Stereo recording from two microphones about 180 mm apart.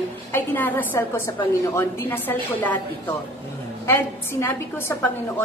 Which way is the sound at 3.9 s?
10° left (ahead or behind).